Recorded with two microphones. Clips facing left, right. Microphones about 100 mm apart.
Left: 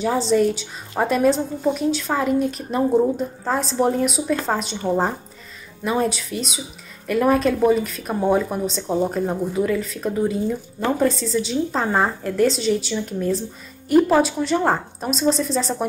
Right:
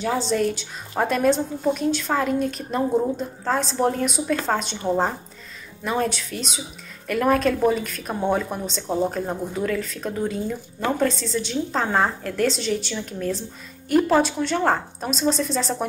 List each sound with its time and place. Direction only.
0.0 s a woman's voice: centre (ahead or behind)